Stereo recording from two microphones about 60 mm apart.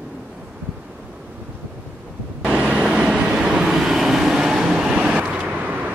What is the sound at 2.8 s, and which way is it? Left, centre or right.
Train, centre.